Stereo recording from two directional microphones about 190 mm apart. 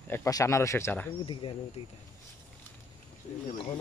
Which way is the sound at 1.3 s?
25° left (ahead or behind).